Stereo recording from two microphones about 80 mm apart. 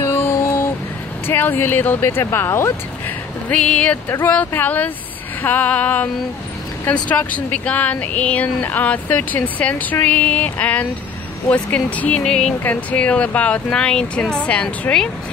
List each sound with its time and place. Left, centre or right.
0.0 s a sound: left
1.2 s speech: left
3.4 s speech: centre